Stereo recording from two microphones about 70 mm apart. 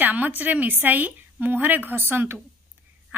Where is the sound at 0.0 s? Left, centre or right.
Right.